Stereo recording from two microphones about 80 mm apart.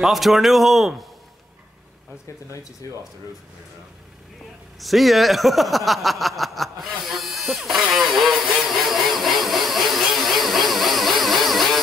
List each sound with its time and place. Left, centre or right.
0.0 s speech: centre
2.8 s speech: left
4.7 s speech: centre
7.9 s vehicle: centre